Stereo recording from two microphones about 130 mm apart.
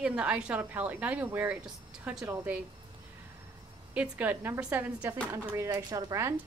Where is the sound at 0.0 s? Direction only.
10° right (ahead or behind).